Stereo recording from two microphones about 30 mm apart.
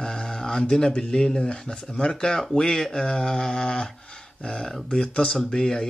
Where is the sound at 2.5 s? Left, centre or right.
Centre.